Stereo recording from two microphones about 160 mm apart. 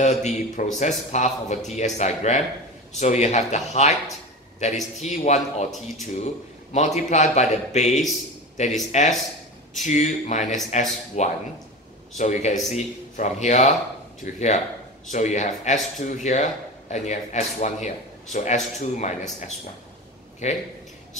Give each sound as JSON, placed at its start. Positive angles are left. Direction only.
{"t": 0.0, "sound": "a man's voice", "side_deg": 45}
{"t": 5.0, "sound": "a man's voice", "side_deg": 45}
{"t": 20.4, "sound": "a man's voice", "side_deg": 45}